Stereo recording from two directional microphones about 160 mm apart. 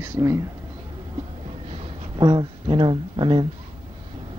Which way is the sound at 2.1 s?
25° right (ahead or behind).